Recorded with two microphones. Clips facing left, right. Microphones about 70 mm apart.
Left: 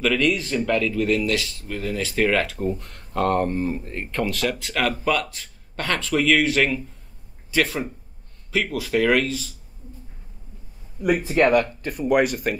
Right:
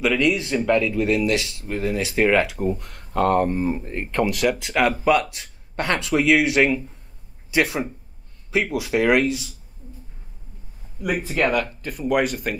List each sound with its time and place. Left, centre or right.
0.0 s speech: centre
11.0 s speech: centre